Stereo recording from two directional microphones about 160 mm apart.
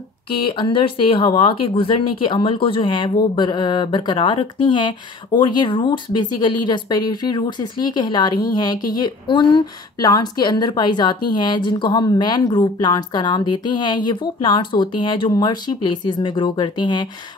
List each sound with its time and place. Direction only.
0.5 s speech: 30° left (ahead or behind)